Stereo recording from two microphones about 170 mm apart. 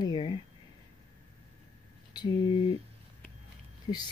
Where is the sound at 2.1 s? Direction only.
25° left (ahead or behind).